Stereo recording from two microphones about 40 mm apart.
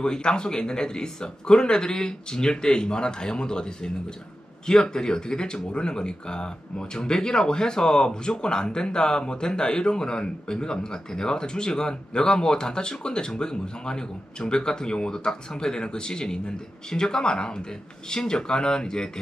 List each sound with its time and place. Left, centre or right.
0.0 s speech: left